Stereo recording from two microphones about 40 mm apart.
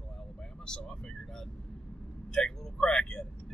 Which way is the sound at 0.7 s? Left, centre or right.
Centre.